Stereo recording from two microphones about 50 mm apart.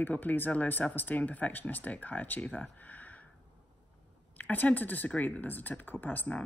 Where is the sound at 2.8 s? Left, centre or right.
Left.